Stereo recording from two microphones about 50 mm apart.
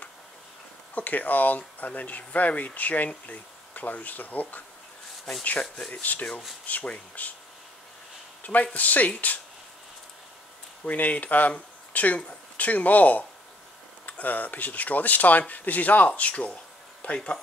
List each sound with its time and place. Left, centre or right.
0.9 s speech: left
5.6 s speech: centre
6.7 s speech: left
8.4 s a sound: left
8.7 s speech: left
10.9 s speech: left